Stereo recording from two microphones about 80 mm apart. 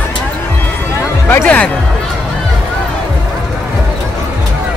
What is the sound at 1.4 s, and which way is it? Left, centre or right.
Music, centre.